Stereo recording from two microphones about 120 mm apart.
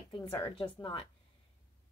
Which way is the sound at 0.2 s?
25° left (ahead or behind).